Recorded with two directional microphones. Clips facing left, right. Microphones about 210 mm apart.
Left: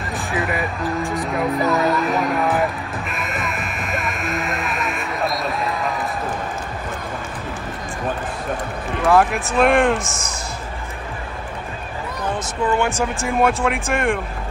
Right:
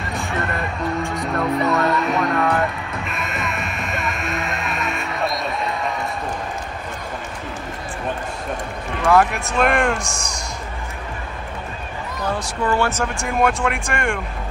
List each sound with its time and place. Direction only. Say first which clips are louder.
0.1 s music: left 2 dB; centre (ahead or behind)
9.0 s speech: even; centre (ahead or behind)
12.4 s speech: left 1 dB; 15° left (ahead or behind)
13.0 s speech: left 1 dB; centre (ahead or behind)